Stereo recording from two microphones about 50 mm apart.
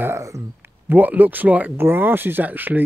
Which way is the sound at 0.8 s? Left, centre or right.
Right.